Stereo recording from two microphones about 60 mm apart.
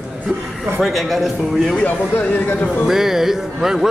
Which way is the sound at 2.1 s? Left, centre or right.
Left.